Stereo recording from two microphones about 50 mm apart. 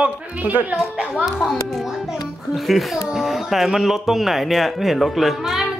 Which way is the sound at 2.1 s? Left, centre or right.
Centre.